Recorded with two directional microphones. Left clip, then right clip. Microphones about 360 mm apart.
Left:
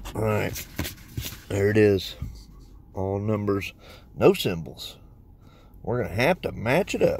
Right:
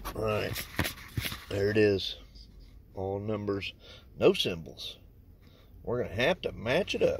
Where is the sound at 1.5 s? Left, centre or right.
Left.